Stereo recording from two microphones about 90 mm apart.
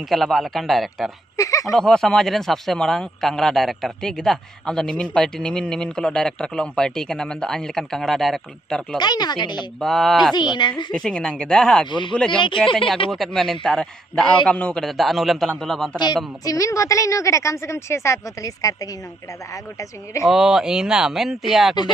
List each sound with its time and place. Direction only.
0.1 s a man's voice: centre (ahead or behind)
1.3 s speech: 40° left (ahead or behind)
1.7 s a man's voice: 5° left (ahead or behind)
8.9 s speech: 55° left (ahead or behind)
9.8 s a man's voice: 5° left (ahead or behind)
10.3 s speech: 55° left (ahead or behind)
10.9 s a man's voice: 5° left (ahead or behind)
12.4 s speech: 70° left (ahead or behind)
12.7 s a man's voice: 5° left (ahead or behind)
16.4 s a woman's voice: 35° left (ahead or behind)
20.2 s a man's voice: 5° right (ahead or behind)